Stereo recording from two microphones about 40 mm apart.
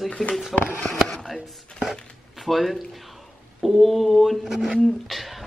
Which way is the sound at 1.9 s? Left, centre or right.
Centre.